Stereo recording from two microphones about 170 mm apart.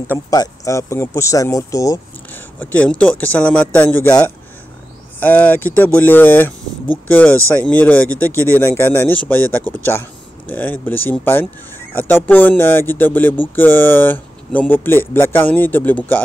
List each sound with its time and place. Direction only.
0.1 s speech: 20° left (ahead or behind)